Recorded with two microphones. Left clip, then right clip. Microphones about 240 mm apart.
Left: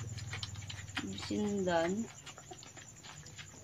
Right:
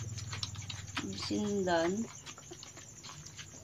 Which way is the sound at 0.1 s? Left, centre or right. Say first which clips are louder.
Right 3 dB; centre.